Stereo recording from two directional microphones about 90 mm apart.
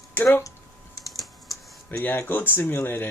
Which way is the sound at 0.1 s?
25° left (ahead or behind).